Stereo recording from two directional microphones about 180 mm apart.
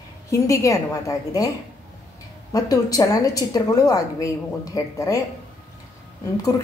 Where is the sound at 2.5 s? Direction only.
20° left (ahead or behind).